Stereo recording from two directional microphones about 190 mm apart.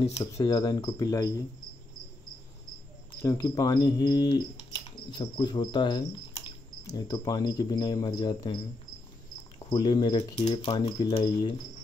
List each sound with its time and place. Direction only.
0.0 s speech: 30° left (ahead or behind)
0.4 s speech: 20° left (ahead or behind)
3.2 s speech: 15° left (ahead or behind)
5.1 s cricket: 25° left (ahead or behind)
7.0 s speech: 20° left (ahead or behind)
9.7 s speech: 25° left (ahead or behind)
10.1 s speech: 35° left (ahead or behind)